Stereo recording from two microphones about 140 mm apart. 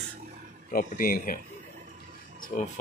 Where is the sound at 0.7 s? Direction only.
90° left.